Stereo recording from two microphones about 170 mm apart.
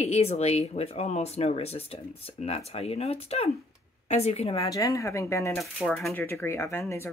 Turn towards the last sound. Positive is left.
turn(degrees=15)  # may be behind; listen again after turning